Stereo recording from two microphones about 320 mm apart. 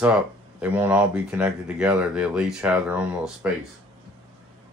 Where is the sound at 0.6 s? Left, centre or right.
Centre.